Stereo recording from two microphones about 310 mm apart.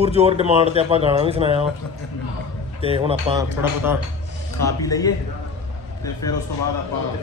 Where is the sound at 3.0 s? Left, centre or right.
Centre.